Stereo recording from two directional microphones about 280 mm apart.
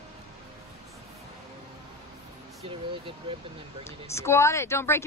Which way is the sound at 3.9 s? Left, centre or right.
Centre.